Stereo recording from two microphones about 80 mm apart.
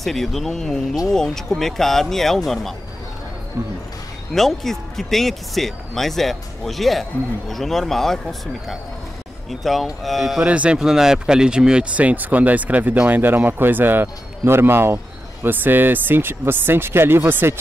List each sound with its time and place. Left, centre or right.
0.0 s speech: centre
3.6 s speech: right
4.3 s speech: centre
10.4 s speech: centre